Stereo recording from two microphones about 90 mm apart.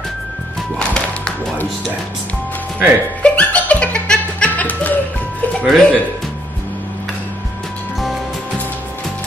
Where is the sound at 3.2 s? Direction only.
15° left (ahead or behind).